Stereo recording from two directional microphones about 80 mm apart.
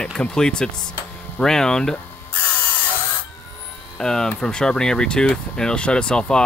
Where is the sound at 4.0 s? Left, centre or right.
Centre.